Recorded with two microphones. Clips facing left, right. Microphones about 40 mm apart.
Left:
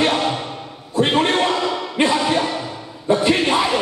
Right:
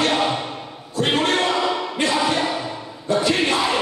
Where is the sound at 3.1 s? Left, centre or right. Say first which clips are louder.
Left 3 dB; left.